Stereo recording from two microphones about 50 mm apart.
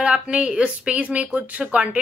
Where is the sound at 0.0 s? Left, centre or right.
Right.